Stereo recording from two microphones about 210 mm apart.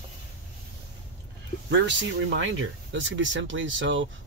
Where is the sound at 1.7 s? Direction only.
55° right (ahead or behind).